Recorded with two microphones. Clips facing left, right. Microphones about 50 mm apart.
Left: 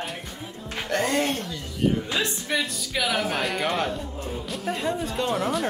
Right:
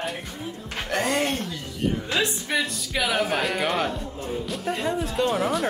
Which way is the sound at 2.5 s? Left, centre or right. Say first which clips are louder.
Even; centre.